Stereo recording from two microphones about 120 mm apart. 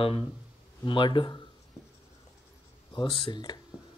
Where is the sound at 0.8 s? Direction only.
45° left (ahead or behind).